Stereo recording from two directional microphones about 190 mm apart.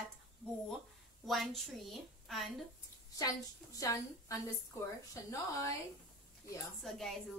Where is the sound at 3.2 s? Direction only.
20° left (ahead or behind).